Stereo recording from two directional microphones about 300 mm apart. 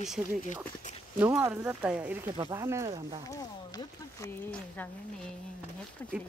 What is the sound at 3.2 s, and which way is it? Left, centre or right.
Speech, centre.